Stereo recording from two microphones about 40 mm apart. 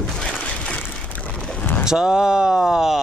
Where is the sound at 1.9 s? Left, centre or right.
Right.